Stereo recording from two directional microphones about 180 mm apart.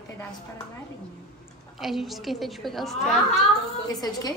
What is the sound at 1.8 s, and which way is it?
A woman's voice, centre (ahead or behind).